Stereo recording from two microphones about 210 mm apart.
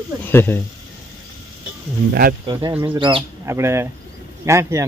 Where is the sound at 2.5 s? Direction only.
20° right (ahead or behind).